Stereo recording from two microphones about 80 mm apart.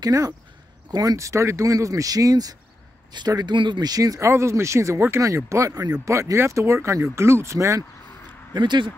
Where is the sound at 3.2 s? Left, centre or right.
Right.